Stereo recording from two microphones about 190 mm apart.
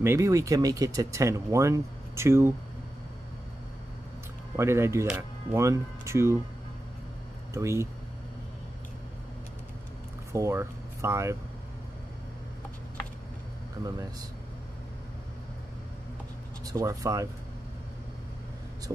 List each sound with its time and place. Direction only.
0.0 s speech: 15° right (ahead or behind)
4.6 s speech: 15° right (ahead or behind)
7.5 s speech: 15° right (ahead or behind)
10.3 s speech: 15° right (ahead or behind)
16.6 s speech: 15° right (ahead or behind)